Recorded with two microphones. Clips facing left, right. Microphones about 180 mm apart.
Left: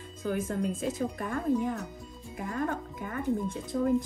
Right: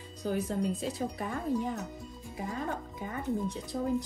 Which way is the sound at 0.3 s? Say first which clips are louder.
Left 1 dB; 50° left (ahead or behind).